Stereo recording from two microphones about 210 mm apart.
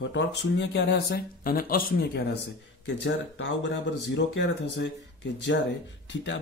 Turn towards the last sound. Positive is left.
turn(degrees=60)  # may be behind; listen again after turning